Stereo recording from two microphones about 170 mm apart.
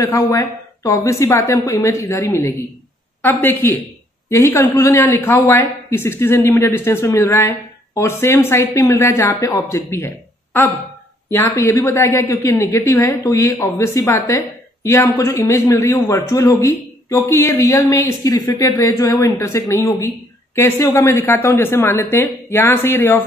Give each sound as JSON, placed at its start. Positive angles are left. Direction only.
{"t": 0.0, "sound": "a woman's voice", "side_deg": 20}